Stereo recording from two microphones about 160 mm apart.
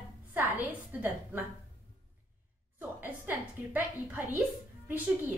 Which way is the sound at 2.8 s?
10° right (ahead or behind).